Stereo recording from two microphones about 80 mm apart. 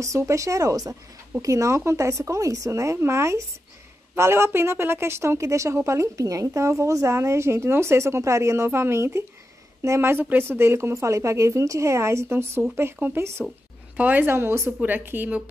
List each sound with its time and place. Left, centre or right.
0.0 s a woman's voice: right